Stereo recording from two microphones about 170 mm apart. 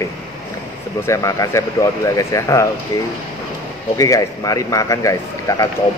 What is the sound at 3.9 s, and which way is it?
A man's voice, 20° left (ahead or behind).